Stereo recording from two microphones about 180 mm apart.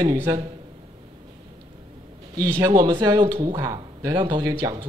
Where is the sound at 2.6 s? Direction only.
20° right (ahead or behind).